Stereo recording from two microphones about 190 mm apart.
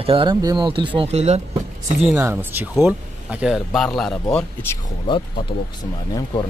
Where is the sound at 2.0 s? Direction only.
10° right (ahead or behind).